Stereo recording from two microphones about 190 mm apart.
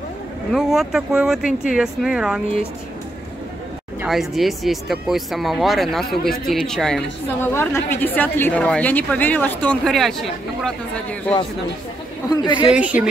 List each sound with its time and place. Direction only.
0.5 s speech: centre (ahead or behind)
4.0 s a woman's voice: centre (ahead or behind)
12.2 s speech: 15° left (ahead or behind)
12.6 s a woman's voice: 5° right (ahead or behind)